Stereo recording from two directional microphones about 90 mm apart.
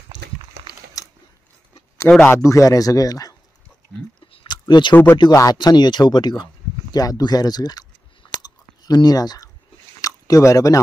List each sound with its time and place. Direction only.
1.0 s a sound: 40° left (ahead or behind)
2.1 s speech: 15° left (ahead or behind)
2.4 s speech: 35° left (ahead or behind)
4.3 s a sound: 60° left (ahead or behind)
4.9 s speech: 25° left (ahead or behind)
5.3 s speech: 45° left (ahead or behind)
8.4 s chewing: 45° left (ahead or behind)
10.0 s speech: 40° left (ahead or behind)